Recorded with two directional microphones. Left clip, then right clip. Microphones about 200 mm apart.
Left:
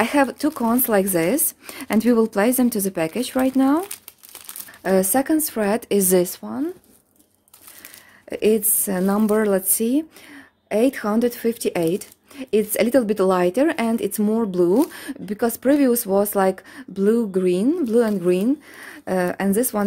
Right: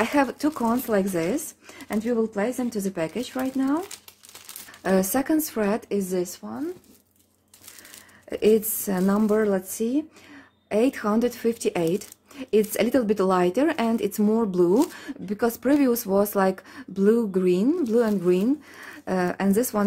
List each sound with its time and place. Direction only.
0.0 s speech: 25° left (ahead or behind)
0.8 s speech: 35° left (ahead or behind)
4.8 s speech: 20° left (ahead or behind)
5.9 s a woman's voice: 55° left (ahead or behind)
8.3 s speech: 25° left (ahead or behind)
10.7 s speech: 20° left (ahead or behind)